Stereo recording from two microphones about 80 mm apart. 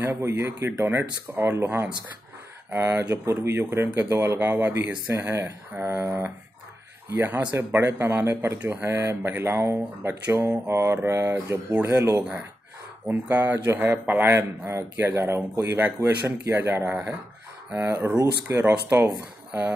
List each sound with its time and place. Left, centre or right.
0.0 s speech: right
12.2 s speech: centre
14.3 s speech: right
18.0 s speech: right
18.6 s speech: right